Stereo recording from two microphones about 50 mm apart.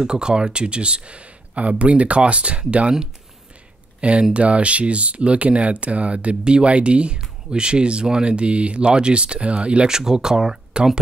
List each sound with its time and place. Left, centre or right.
0.0 s speech: centre
4.0 s speech: right